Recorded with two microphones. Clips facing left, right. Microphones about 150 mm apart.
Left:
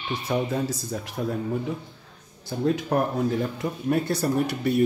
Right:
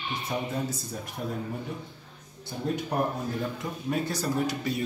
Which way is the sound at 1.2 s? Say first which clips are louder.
Left 6 dB; 90° left.